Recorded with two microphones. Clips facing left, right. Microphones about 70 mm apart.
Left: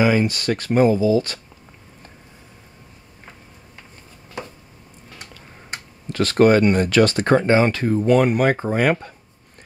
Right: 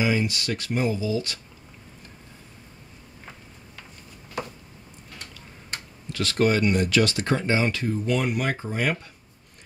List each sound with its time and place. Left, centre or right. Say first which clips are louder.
0.0 s speech: left 7 dB; left
5.7 s tick-tock: left 3 dB; left
6.1 s speech: left 8 dB; left